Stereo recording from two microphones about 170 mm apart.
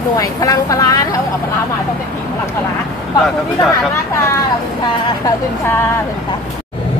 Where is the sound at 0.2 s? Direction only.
20° left (ahead or behind).